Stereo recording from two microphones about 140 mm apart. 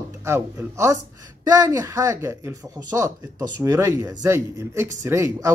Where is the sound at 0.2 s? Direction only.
20° right (ahead or behind).